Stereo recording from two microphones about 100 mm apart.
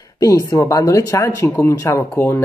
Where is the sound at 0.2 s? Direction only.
35° left (ahead or behind).